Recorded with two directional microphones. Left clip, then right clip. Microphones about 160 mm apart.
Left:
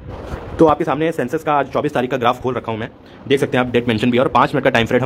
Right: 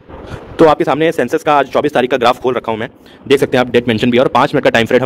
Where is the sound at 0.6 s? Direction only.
50° right (ahead or behind).